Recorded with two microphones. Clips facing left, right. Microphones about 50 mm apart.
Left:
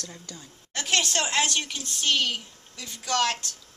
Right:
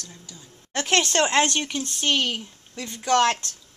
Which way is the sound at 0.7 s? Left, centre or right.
Right.